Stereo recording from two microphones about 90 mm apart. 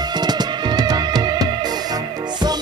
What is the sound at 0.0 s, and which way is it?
Music, 50° right (ahead or behind).